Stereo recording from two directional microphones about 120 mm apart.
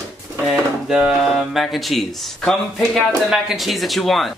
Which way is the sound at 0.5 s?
5° right (ahead or behind).